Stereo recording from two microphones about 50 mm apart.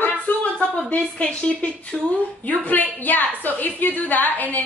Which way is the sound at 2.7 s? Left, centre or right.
Left.